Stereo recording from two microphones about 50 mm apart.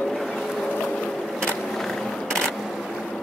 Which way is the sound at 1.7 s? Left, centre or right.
Centre.